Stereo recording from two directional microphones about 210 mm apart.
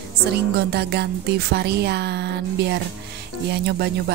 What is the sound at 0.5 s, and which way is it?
A woman's voice, 50° right (ahead or behind).